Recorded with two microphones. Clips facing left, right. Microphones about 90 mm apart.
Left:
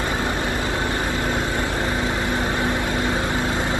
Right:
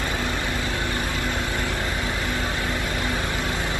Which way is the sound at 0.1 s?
20° left (ahead or behind).